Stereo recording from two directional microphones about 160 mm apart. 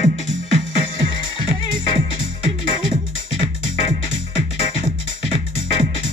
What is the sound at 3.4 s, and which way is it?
Music, 35° left (ahead or behind).